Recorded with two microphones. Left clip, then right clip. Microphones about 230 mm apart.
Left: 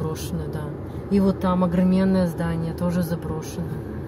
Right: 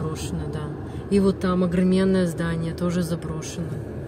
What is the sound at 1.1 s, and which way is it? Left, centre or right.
Speech, right.